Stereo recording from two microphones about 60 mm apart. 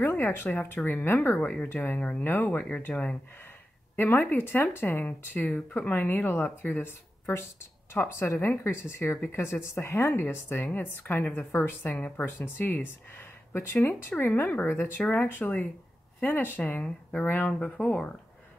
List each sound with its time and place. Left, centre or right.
0.0 s speech: left
1.4 s speech: left
1.7 s speech: left
2.0 s speech: centre
2.2 s speech: left
2.9 s speech: centre
3.9 s speech: left
5.4 s speech: centre
5.8 s speech: left
16.5 s speech: left